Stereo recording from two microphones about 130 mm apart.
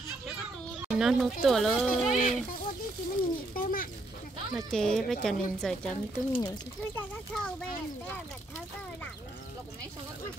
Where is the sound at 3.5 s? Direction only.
90° left.